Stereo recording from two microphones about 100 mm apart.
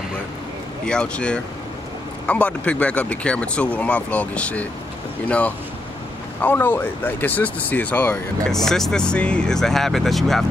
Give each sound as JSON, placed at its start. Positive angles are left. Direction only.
{"t": 0.8, "sound": "speech", "side_deg": 10}
{"t": 6.4, "sound": "speech", "side_deg": 20}
{"t": 8.5, "sound": "speech", "side_deg": 5}